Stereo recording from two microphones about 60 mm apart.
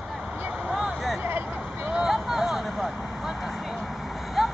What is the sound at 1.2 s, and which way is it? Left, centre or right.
Vehicle, right.